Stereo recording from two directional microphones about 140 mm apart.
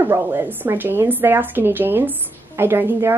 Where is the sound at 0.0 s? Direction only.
15° right (ahead or behind).